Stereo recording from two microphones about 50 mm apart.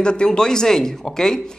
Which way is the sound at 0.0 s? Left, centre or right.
Centre.